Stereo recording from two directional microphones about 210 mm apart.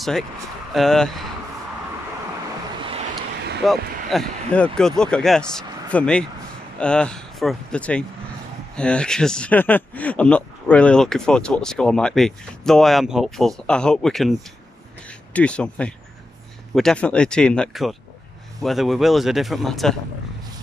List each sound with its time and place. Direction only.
0.7 s speech: 5° left (ahead or behind)
3.2 s vehicle: 50° right (ahead or behind)
3.6 s speech: centre (ahead or behind)